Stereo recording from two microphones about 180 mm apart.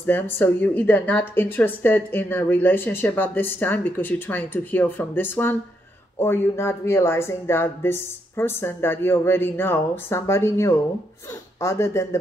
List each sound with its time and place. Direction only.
0.0 s speech: 10° left (ahead or behind)